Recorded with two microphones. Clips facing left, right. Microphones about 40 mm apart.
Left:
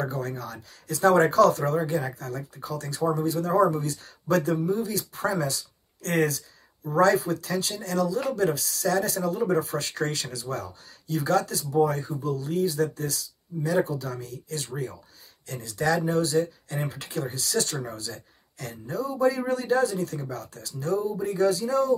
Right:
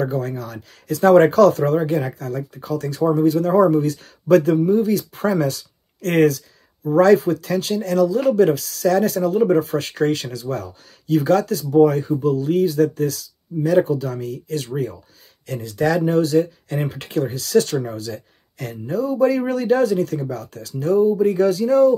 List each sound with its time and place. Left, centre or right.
0.0 s speech: right